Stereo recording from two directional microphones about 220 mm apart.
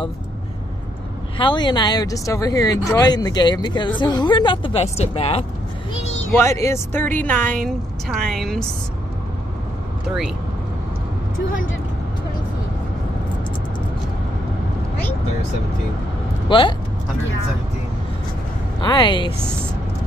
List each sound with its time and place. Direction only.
1.4 s speech: 20° left (ahead or behind)
6.3 s a woman's voice: 15° left (ahead or behind)
10.0 s a woman's voice: centre (ahead or behind)
16.4 s speech: 20° left (ahead or behind)
18.8 s speech: 20° left (ahead or behind)